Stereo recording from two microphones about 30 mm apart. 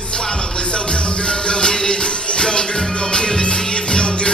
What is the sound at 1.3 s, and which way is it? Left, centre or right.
Music, left.